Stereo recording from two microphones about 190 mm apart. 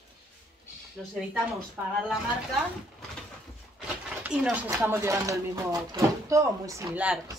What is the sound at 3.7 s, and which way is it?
Speech, 5° right (ahead or behind).